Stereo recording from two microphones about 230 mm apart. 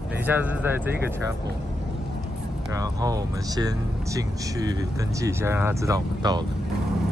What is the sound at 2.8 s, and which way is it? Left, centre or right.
Speech, centre.